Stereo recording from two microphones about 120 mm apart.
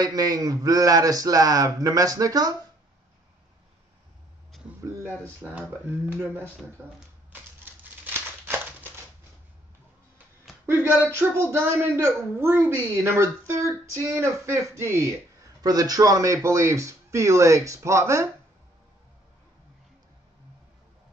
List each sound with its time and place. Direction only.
0.0 s speech: 30° right (ahead or behind)
5.4 s speech: 15° right (ahead or behind)
8.0 s crumpling: 15° right (ahead or behind)
10.7 s speech: 20° right (ahead or behind)